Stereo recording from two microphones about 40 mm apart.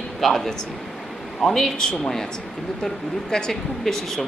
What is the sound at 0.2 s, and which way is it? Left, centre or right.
Speech, centre.